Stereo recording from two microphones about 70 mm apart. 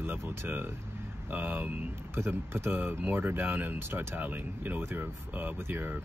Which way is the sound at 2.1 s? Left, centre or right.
Right.